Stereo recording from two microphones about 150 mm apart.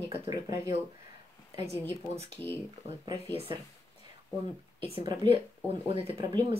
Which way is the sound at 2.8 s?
30° right (ahead or behind).